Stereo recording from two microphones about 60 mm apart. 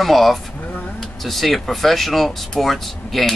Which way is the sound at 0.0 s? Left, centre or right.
Centre.